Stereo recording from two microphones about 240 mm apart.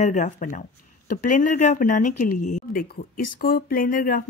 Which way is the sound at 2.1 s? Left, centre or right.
Left.